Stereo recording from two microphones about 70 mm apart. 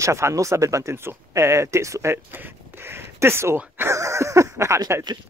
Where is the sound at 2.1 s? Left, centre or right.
Right.